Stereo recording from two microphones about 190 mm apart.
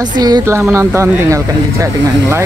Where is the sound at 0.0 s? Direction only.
20° right (ahead or behind).